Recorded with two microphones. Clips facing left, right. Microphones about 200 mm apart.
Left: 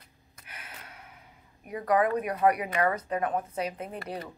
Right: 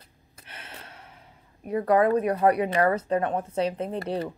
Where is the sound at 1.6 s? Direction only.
30° right (ahead or behind).